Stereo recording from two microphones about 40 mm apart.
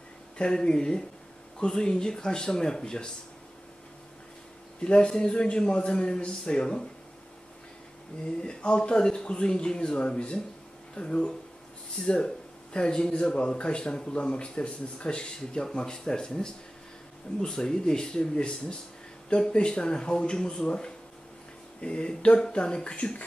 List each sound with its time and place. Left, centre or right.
0.4 s speech: left
4.8 s speech: left
8.4 s speech: left
12.7 s speech: left